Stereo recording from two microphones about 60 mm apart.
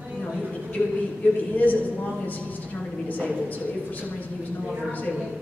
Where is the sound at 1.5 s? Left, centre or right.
Left.